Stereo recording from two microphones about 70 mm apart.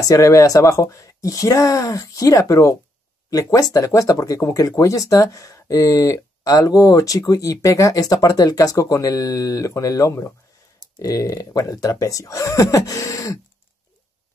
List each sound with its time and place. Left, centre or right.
0.0 s speech: left
11.0 s speech: left